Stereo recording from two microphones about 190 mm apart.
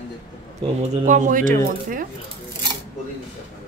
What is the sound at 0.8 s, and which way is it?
A woman's voice, 40° right (ahead or behind).